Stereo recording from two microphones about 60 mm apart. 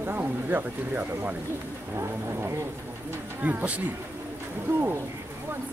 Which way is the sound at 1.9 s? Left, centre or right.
Right.